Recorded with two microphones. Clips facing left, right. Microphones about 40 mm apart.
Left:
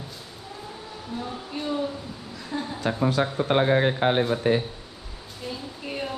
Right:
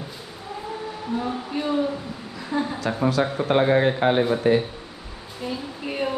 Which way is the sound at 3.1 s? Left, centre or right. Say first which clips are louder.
Right 4 dB; right.